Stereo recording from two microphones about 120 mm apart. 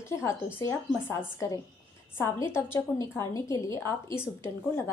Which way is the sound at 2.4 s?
20° left (ahead or behind).